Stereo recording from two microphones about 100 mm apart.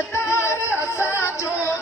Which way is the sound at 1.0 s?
25° left (ahead or behind).